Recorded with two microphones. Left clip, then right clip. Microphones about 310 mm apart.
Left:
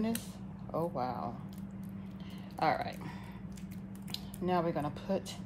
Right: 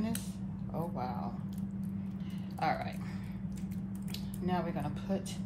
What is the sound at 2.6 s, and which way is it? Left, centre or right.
Speech, left.